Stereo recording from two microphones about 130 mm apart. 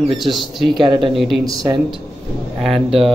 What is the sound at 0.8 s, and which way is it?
Speech, 35° right (ahead or behind).